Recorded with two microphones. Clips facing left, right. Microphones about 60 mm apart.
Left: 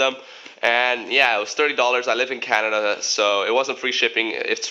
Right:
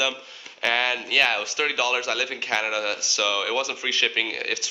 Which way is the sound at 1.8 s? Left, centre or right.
Left.